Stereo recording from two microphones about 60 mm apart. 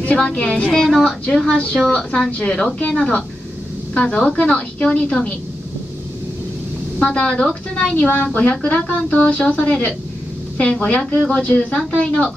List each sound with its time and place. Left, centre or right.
0.0 s speech: left
0.7 s a woman's voice: centre; by 5.3 s left
7.0 s a woman's voice: centre